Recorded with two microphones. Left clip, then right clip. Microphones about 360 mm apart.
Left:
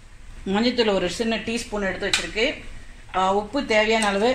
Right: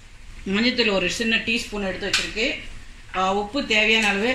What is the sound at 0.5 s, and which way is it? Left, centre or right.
A woman's voice, centre.